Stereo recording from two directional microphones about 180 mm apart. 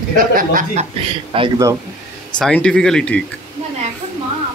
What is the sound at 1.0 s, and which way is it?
Speech, 30° right (ahead or behind).